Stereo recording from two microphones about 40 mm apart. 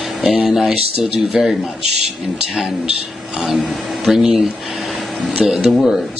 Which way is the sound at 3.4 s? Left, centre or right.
Centre.